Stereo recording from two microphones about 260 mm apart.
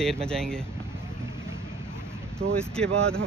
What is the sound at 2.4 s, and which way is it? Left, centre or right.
Speech, right.